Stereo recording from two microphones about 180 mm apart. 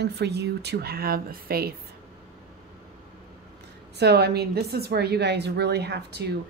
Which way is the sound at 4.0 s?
65° right (ahead or behind).